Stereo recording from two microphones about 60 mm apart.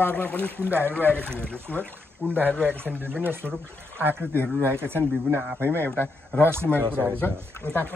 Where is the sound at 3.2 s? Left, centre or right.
Right.